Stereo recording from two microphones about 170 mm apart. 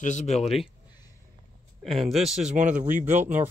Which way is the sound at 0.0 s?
45° left (ahead or behind).